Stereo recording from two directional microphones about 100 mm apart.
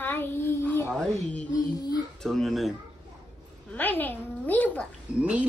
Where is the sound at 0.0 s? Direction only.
20° left (ahead or behind).